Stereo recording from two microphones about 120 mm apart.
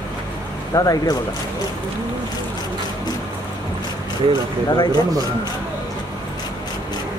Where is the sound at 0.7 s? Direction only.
30° left (ahead or behind).